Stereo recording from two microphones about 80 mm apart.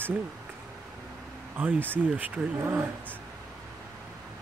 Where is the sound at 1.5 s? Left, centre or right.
Right.